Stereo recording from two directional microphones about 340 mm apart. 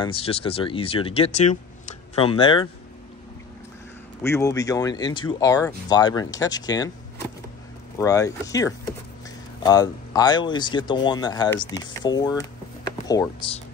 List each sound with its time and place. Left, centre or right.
0.0 s speech: centre
4.2 s speech: centre
8.0 s speech: centre